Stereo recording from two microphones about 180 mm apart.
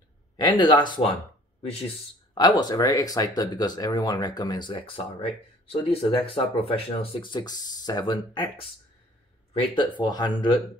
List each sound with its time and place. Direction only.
0.4 s speech: 25° left (ahead or behind)
2.3 s speech: 20° left (ahead or behind)